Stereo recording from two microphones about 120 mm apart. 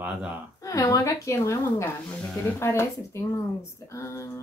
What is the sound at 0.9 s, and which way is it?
A woman's voice, 25° left (ahead or behind).